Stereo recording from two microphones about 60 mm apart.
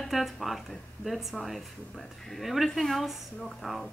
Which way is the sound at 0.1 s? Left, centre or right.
Centre.